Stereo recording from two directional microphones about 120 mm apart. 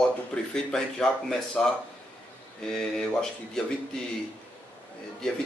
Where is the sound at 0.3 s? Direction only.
5° left (ahead or behind).